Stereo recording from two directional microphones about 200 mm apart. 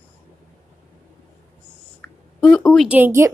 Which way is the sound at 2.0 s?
5° left (ahead or behind).